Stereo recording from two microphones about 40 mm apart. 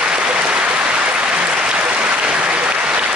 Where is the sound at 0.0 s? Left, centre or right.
Right.